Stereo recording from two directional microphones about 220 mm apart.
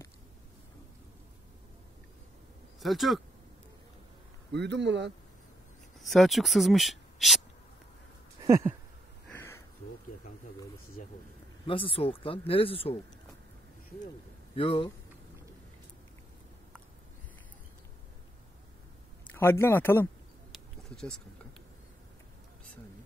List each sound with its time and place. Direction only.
2.8 s speech: centre (ahead or behind)
4.5 s a man's voice: 50° right (ahead or behind)
5.9 s speech: centre (ahead or behind)
8.5 s a sound: 15° right (ahead or behind)
11.0 s speech: 35° left (ahead or behind)
14.5 s speech: 25° left (ahead or behind)
19.3 s speech: 10° left (ahead or behind)
20.5 s a sound: centre (ahead or behind)